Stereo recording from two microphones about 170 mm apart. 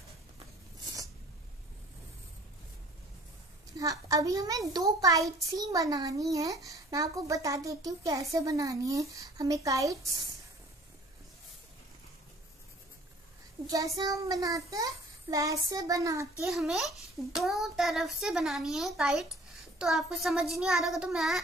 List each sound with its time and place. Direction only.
3.7 s a child's voice: 20° right (ahead or behind)
13.7 s a child's voice: 20° right (ahead or behind)
16.3 s a child's voice: centre (ahead or behind)